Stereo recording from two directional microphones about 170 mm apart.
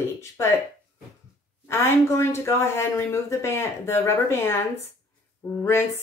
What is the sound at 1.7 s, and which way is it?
Speech, 15° left (ahead or behind).